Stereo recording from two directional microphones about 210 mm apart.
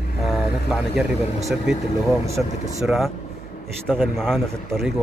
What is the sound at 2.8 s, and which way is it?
A man's voice, centre (ahead or behind).